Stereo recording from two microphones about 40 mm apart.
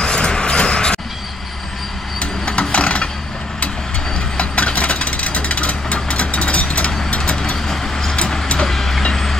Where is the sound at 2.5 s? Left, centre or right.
Left.